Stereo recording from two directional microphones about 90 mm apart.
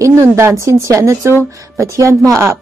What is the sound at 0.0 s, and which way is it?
A woman's voice, 35° right (ahead or behind).